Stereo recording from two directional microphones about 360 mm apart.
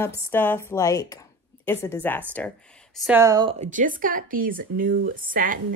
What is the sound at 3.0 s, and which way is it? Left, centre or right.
A woman's voice, centre.